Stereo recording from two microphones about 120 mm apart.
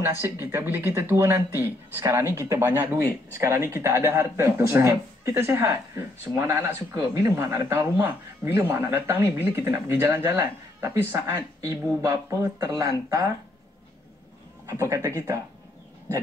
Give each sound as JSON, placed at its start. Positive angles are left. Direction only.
{"t": 0.0, "sound": "speech", "side_deg": -20}
{"t": 14.7, "sound": "speech", "side_deg": -25}